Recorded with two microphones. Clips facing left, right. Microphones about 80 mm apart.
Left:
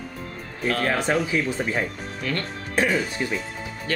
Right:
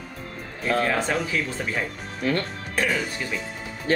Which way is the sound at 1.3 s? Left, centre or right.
Centre.